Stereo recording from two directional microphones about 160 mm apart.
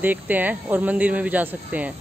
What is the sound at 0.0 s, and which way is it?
Speech, 10° right (ahead or behind).